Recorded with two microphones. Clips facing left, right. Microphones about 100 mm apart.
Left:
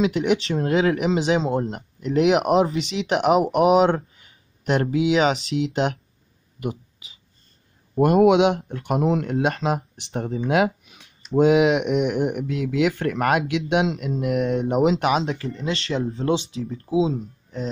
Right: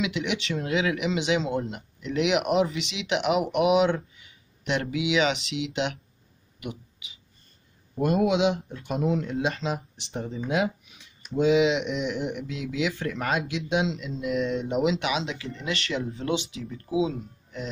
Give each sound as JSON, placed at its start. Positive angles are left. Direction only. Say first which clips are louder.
{"t": 0.0, "sound": "speech", "louder": "left 8 dB", "side_deg": 45}
{"t": 8.0, "sound": "speech", "louder": "left 7 dB", "side_deg": 65}
{"t": 10.1, "sound": "speech", "louder": "left 6 dB", "side_deg": 65}